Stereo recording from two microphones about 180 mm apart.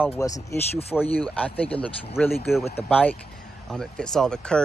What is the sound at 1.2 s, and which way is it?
Speech, 5° left (ahead or behind).